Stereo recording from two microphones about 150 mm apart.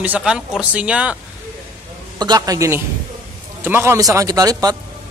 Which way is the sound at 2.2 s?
25° right (ahead or behind).